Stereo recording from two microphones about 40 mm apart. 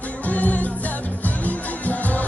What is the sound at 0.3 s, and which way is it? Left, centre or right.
Music, left.